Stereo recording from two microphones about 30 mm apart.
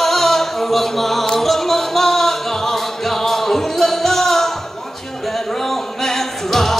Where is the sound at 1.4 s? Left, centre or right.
Centre.